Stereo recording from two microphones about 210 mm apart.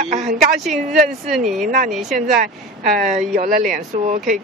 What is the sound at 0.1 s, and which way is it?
Speech, 35° right (ahead or behind).